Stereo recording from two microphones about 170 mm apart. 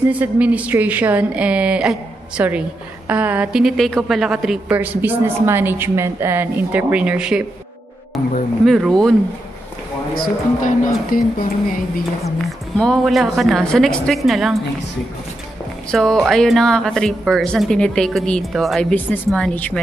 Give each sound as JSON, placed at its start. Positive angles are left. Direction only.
{"t": 0.1, "sound": "a woman's voice", "side_deg": -10}
{"t": 8.6, "sound": "speech", "side_deg": 0}
{"t": 10.1, "sound": "speech", "side_deg": 55}
{"t": 12.4, "sound": "speech", "side_deg": 5}
{"t": 15.9, "sound": "speech", "side_deg": 0}